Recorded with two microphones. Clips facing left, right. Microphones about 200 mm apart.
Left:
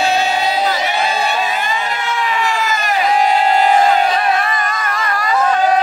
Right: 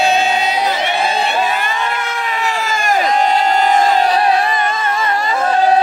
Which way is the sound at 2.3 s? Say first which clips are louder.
Left 1 dB; 40° right (ahead or behind).